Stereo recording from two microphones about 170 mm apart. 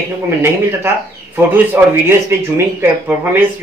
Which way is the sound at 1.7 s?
15° right (ahead or behind).